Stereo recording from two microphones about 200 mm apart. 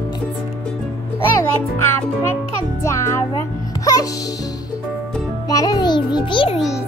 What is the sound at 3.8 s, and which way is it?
Music, 15° left (ahead or behind).